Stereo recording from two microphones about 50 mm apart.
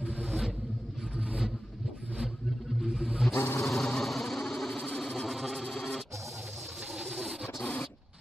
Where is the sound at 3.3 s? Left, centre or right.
Left.